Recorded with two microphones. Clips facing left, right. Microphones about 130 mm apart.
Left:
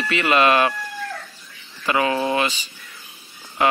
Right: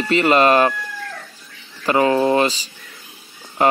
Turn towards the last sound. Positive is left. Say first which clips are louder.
# right 3 dB
turn(degrees=-40)  # may be behind; listen again after turning